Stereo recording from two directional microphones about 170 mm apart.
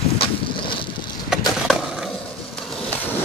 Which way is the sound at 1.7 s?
Centre (ahead or behind).